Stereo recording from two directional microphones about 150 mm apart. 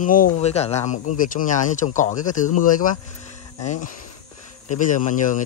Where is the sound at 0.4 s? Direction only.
45° left (ahead or behind).